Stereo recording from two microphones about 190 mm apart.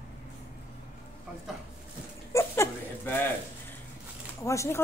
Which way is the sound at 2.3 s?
15° left (ahead or behind).